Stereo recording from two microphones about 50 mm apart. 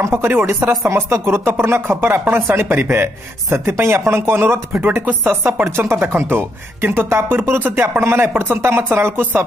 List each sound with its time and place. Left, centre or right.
0.1 s speech: right
0.8 s speech: right